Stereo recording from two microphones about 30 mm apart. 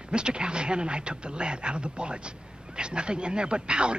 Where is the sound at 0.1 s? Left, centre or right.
Right.